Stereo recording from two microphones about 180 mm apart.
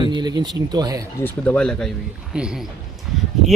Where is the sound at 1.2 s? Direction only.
5° left (ahead or behind).